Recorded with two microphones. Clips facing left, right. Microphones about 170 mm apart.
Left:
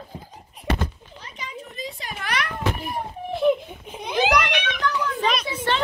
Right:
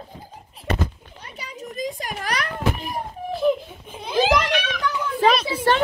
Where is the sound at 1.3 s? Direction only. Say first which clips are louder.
Right 4 dB; 40° right (ahead or behind).